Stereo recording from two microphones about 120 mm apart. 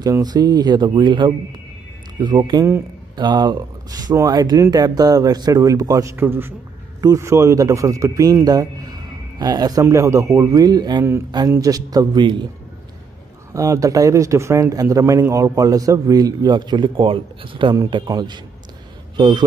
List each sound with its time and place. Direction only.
0.0 s speech: 30° right (ahead or behind)
6.1 s speech: 20° right (ahead or behind); by 12.4 s 40° right (ahead or behind)
13.5 s speech: 25° right (ahead or behind)